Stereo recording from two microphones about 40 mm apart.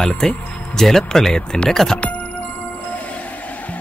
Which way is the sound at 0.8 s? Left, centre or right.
Centre.